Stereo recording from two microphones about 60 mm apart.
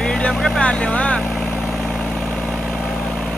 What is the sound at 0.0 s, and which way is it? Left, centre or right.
Vehicle, centre.